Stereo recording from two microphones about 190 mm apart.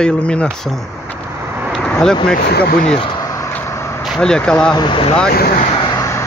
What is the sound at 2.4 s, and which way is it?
Speech, 60° left (ahead or behind).